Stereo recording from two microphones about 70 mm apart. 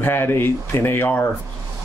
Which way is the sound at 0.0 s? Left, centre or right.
Left.